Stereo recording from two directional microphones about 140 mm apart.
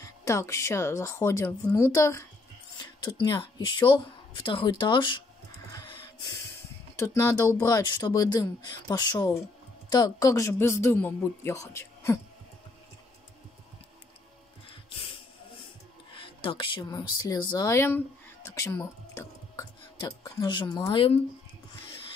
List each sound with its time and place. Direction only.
0.0 s speech: 20° left (ahead or behind)
7.0 s speech: 20° left (ahead or behind)
16.2 s speech: 35° left (ahead or behind)